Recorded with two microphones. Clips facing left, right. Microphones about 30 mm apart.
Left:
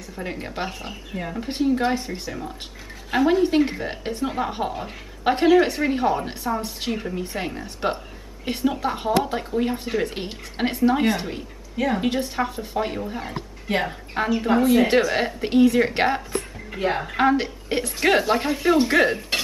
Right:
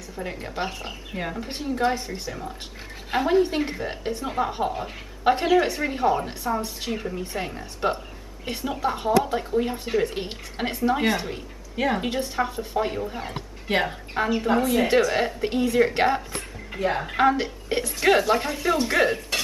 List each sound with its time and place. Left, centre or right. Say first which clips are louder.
0.1 s a woman's voice: left 1 dB; centre
3.1 s speech: left 4 dB; centre
3.4 s a woman's voice: left 6 dB; centre
11.7 s a woman's voice: left 1 dB; centre
12.0 s a woman's voice: left 2 dB; centre
13.7 s speech: even; centre
14.4 s a woman's voice: left 6 dB; centre
16.8 s a woman's voice: left 1 dB; left
17.2 s a woman's voice: left 1 dB; centre